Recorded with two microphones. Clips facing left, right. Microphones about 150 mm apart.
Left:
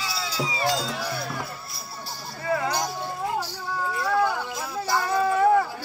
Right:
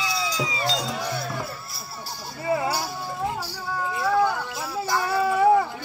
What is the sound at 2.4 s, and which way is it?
Music, 20° right (ahead or behind).